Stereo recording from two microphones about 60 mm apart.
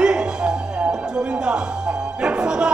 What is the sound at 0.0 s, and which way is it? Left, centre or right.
Music, centre.